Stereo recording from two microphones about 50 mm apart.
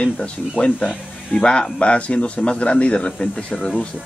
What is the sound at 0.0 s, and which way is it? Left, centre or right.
Speech, left.